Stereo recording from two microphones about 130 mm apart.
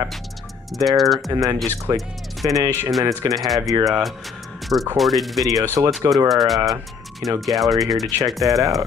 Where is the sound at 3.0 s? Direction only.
25° right (ahead or behind).